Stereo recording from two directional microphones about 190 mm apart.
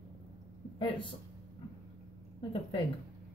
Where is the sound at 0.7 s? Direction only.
25° left (ahead or behind).